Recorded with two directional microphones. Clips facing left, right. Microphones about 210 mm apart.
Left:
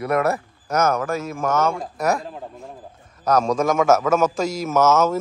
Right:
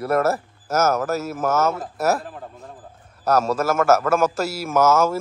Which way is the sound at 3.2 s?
5° right (ahead or behind).